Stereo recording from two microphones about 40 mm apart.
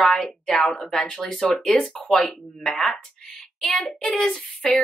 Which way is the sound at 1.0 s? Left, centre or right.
Centre.